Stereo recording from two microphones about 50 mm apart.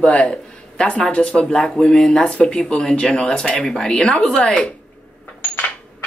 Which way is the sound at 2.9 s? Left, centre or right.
Centre.